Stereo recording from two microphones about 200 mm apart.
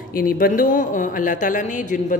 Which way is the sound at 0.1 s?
45° left (ahead or behind).